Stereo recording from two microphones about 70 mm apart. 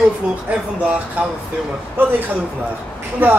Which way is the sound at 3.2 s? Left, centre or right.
Right.